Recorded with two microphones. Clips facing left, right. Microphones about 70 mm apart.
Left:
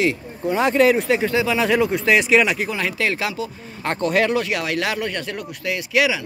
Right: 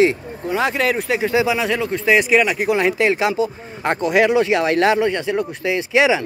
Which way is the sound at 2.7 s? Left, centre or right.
Right.